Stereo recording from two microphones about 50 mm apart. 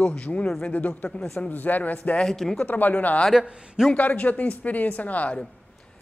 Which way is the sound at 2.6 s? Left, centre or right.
Left.